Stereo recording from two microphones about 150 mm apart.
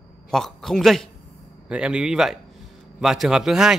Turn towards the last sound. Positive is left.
turn(degrees=-5)  # may be behind; listen again after turning